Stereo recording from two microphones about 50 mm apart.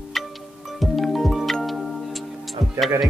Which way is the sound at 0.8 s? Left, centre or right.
Centre.